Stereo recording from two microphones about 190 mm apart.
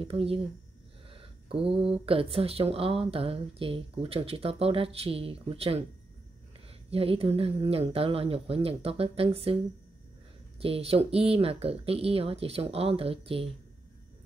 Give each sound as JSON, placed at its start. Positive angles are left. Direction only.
{"t": 0.0, "sound": "speech", "side_deg": -30}
{"t": 6.9, "sound": "speech", "side_deg": -30}
{"t": 10.6, "sound": "speech", "side_deg": -30}